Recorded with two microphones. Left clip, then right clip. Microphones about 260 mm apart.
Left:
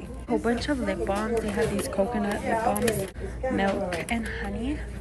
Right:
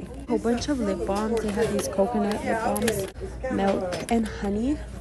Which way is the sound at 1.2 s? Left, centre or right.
Centre.